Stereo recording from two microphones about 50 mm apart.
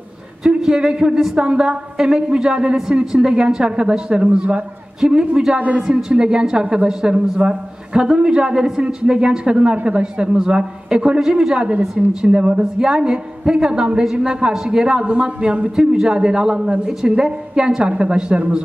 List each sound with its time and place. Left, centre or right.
0.4 s a man's voice: centre
11.8 s a woman's voice: centre
12.2 s a woman's voice: right